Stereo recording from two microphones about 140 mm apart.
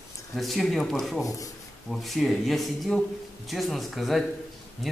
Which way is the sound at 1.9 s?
Centre (ahead or behind).